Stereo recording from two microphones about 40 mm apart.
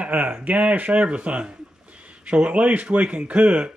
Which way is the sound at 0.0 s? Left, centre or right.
Right.